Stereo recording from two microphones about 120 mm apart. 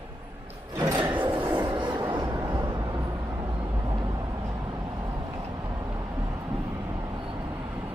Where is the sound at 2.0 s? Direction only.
35° right (ahead or behind).